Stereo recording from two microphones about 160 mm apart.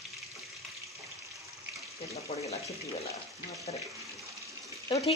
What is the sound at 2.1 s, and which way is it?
Speech, 40° left (ahead or behind).